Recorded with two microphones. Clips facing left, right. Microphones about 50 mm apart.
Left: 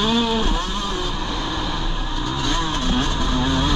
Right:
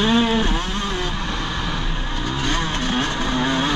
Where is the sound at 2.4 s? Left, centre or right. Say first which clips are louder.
Even; right.